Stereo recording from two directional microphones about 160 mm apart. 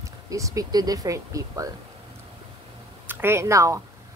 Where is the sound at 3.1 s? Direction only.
15° right (ahead or behind).